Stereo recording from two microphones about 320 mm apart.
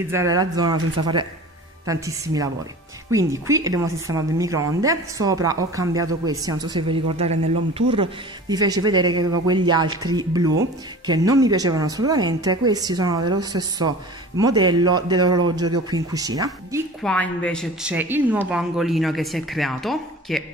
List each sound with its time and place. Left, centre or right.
0.0 s a woman's voice: centre
9.0 s speech: right
9.3 s a woman's voice: centre
17.0 s a woman's voice: centre